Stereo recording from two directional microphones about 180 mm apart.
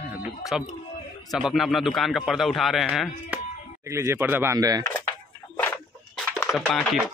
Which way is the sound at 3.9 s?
15° right (ahead or behind).